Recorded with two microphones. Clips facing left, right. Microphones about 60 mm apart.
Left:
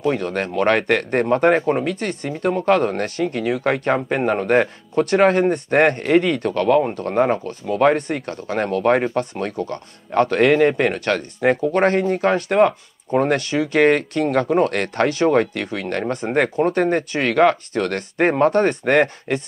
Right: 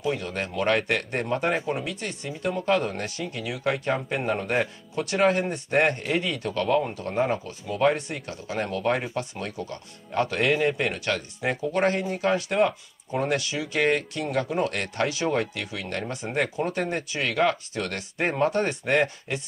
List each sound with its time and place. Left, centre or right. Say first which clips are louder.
0.0 s speech: left 7 dB; left
4.2 s speech: left 7 dB; left
4.5 s speech: left 9 dB; left